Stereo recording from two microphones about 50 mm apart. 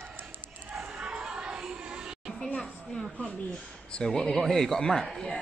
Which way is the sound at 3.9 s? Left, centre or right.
Centre.